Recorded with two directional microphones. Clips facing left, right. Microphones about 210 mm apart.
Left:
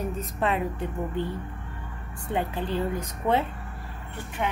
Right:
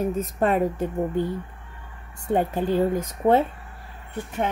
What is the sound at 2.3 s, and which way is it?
A woman's voice, 45° right (ahead or behind).